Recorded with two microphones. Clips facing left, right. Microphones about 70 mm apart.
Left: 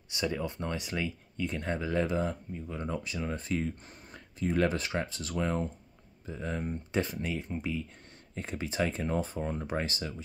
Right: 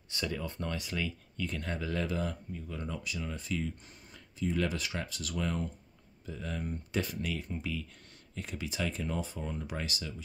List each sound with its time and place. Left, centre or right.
0.1 s speech: centre